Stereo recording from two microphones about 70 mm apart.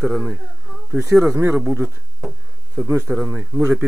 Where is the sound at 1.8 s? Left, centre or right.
Right.